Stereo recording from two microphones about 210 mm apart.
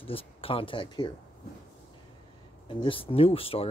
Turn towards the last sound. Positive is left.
turn(degrees=25)  # may be behind; listen again after turning